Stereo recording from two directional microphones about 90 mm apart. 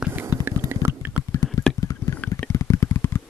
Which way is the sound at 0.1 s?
25° right (ahead or behind).